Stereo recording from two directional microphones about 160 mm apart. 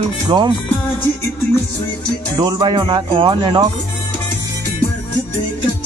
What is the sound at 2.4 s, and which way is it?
Speech, 25° right (ahead or behind).